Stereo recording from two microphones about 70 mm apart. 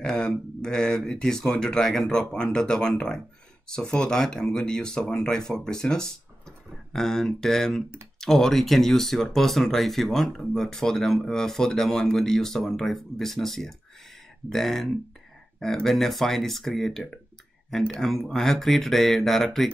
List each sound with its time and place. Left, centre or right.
0.0 s speech: centre